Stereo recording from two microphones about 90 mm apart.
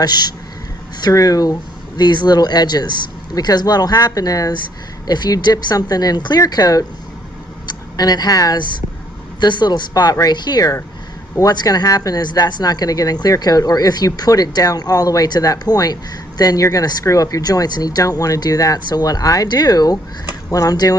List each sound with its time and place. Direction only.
0.0 s speech: 50° left (ahead or behind)
2.0 s a woman's voice: 50° left (ahead or behind)
9.4 s speech: 55° left (ahead or behind)